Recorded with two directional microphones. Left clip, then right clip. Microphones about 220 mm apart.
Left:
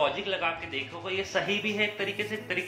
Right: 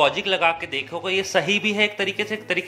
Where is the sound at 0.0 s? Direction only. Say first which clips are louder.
Right 9 dB; 45° right (ahead or behind).